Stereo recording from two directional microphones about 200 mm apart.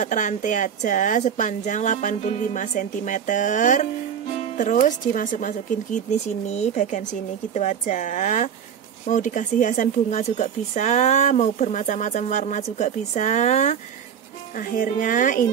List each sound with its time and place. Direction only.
0.0 s speech: 40° left (ahead or behind)
14.8 s speech: 40° left (ahead or behind)